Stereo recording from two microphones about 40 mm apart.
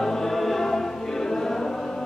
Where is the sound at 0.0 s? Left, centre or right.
Centre.